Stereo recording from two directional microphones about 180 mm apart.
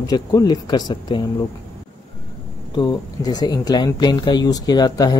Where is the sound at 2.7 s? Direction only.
20° left (ahead or behind).